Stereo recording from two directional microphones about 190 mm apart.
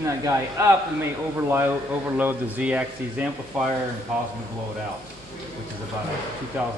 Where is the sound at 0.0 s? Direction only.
15° right (ahead or behind).